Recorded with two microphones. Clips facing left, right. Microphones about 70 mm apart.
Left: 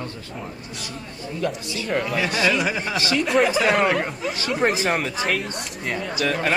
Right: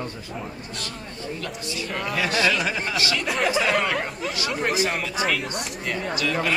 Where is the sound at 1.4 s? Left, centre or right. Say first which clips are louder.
Left 5 dB; centre.